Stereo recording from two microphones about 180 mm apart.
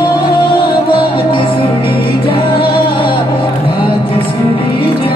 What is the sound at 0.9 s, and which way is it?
Music, 30° left (ahead or behind).